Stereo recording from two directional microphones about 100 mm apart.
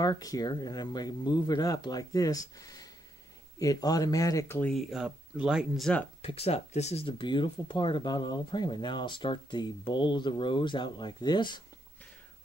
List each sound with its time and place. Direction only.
0.0 s speech: 40° left (ahead or behind)
4.7 s speech: 5° right (ahead or behind)
5.8 s speech: 10° left (ahead or behind)
6.2 s speech: 90° left
7.1 s speech: 55° left (ahead or behind)